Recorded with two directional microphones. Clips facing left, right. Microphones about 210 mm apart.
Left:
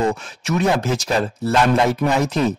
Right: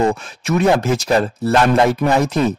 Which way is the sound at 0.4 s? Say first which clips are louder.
Right 4 dB; 55° right (ahead or behind).